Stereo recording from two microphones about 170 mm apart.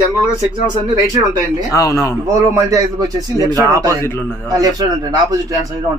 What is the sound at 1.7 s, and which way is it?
Speech, 20° left (ahead or behind).